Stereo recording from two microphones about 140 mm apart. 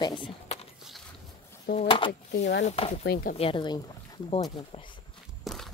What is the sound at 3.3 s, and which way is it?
Speech, 40° left (ahead or behind).